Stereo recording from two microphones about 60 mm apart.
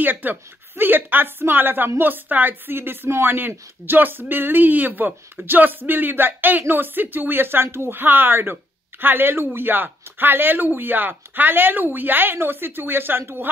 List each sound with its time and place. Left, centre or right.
0.0 s a woman's voice: right